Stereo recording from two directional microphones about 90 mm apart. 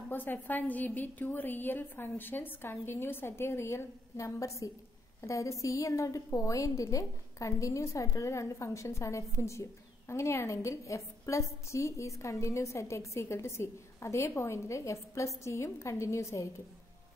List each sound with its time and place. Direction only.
0.1 s a woman's voice: 20° left (ahead or behind)